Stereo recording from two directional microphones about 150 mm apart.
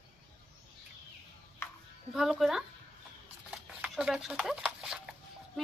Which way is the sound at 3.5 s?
5° right (ahead or behind).